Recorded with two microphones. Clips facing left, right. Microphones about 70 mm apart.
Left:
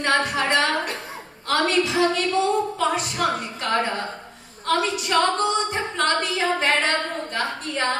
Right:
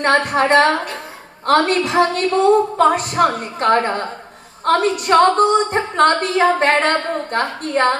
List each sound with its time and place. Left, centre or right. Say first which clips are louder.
0.0 s a woman's voice: right 6 dB; right